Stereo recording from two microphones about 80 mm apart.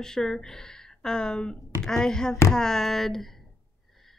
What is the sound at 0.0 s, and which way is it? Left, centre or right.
Speech, centre.